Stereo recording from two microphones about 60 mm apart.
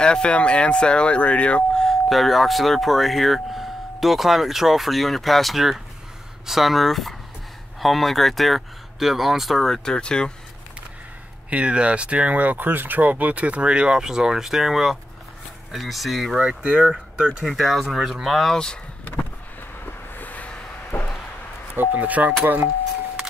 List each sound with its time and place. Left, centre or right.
0.0 s speech: centre
1.8 s speech: centre
9.8 s speech: centre
11.5 s speech: right; by 16.3 s centre
16.3 s speech: centre
17.5 s speech: centre
17.8 s speech: centre
19.8 s a sound: left
21.7 s speech: right